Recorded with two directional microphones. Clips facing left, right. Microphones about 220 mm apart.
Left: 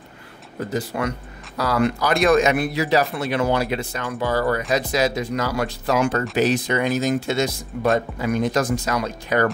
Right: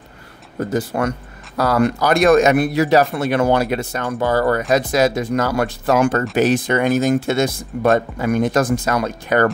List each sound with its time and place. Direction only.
0.6 s speech: 45° right (ahead or behind)